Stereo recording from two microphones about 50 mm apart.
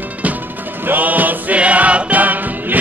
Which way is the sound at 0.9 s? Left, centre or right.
Right.